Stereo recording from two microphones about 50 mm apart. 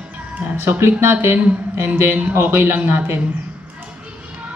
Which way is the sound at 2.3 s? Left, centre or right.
Right.